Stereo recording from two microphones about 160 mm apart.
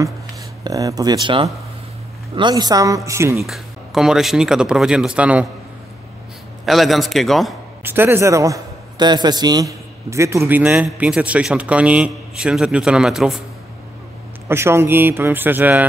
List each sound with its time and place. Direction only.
0.7 s a man's voice: 20° right (ahead or behind)
3.3 s speech: centre (ahead or behind)
6.6 s speech: centre (ahead or behind)
7.8 s a man's voice: 15° right (ahead or behind)
14.5 s a man's voice: 15° right (ahead or behind)